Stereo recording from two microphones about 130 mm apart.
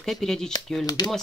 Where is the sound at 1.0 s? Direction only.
35° left (ahead or behind).